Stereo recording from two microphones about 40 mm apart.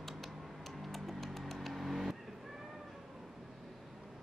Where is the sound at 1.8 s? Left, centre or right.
Centre.